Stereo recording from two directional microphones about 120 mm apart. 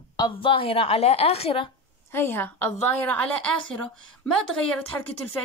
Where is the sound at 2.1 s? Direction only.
20° left (ahead or behind).